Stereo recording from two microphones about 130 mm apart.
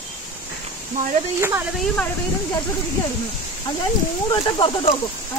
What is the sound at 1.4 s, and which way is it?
Speech, 20° right (ahead or behind).